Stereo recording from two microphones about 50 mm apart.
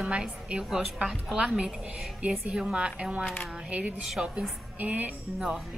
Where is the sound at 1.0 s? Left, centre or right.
Centre.